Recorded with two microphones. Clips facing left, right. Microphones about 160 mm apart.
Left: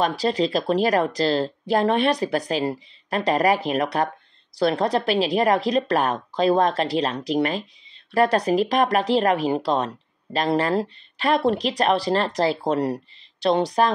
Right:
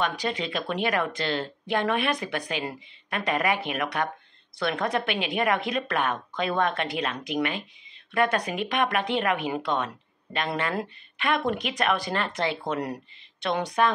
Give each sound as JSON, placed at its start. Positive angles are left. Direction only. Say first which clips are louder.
{"t": 0.2, "sound": "speech", "louder": "left 8 dB", "side_deg": 35}